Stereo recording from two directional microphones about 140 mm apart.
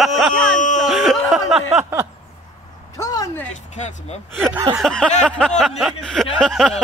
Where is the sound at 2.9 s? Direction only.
25° left (ahead or behind).